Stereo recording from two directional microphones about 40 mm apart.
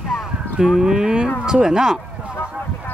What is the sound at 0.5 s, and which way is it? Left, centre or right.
Speech, centre.